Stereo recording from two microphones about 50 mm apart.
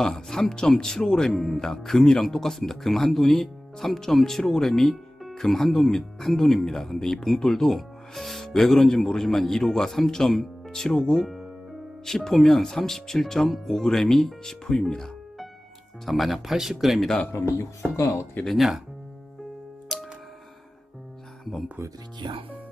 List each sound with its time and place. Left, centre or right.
0.0 s speech: centre
16.1 s speech: centre
17.9 s speech: left
18.5 s speech: centre
19.9 s music: centre